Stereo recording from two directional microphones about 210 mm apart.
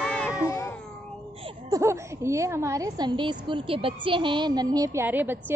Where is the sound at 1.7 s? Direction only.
15° right (ahead or behind).